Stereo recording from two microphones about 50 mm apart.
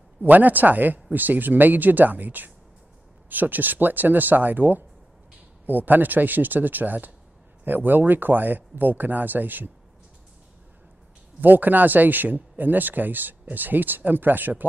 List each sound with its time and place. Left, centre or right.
0.2 s speech: right
11.4 s speech: right